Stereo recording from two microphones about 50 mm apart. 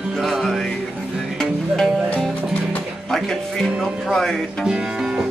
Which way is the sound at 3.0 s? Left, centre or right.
Centre.